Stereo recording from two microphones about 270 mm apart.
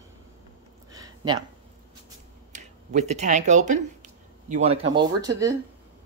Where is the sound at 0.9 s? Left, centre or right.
Centre.